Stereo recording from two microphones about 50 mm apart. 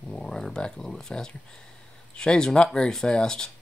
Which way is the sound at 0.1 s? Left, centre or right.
Centre.